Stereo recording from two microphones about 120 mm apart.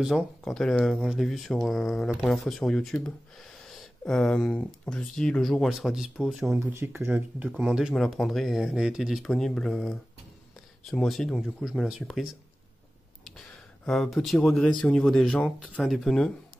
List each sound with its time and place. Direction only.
0.0 s speech: centre (ahead or behind)
6.6 s speech: 20° right (ahead or behind); by 12.3 s 5° right (ahead or behind)
13.8 s speech: centre (ahead or behind)